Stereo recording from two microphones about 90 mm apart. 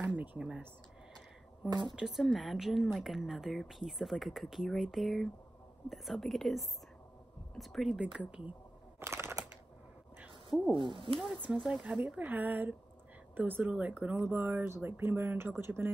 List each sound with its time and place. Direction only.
0.0 s a sound: 20° right (ahead or behind)
1.7 s speech: 55° right (ahead or behind)
2.0 s speech: centre (ahead or behind)
8.0 s speech: 10° right (ahead or behind)
9.0 s a sound: 30° right (ahead or behind)
10.5 s speech: 5° left (ahead or behind)
11.4 s speech: 20° right (ahead or behind)